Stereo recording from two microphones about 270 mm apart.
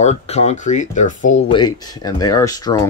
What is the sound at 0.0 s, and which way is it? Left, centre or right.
Speech, left.